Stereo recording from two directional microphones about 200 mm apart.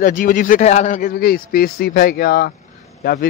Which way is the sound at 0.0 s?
45° left (ahead or behind).